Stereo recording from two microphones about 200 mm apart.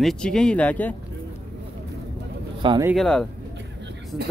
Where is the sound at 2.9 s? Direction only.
Centre (ahead or behind).